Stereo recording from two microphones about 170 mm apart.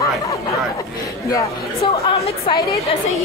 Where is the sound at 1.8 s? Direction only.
35° left (ahead or behind).